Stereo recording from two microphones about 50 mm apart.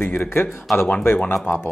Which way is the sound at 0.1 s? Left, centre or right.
Left.